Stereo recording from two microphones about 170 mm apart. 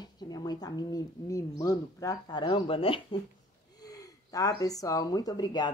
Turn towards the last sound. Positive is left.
turn(degrees=25)  # may be behind; listen again after turning